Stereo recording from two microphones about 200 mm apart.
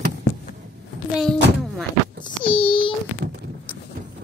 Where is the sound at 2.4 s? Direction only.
25° left (ahead or behind).